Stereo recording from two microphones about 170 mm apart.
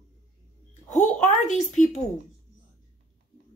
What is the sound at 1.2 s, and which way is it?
Speech, 45° left (ahead or behind).